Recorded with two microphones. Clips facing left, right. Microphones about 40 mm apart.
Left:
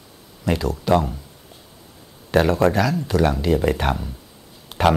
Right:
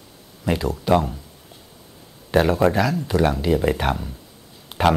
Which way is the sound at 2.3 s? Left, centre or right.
Centre.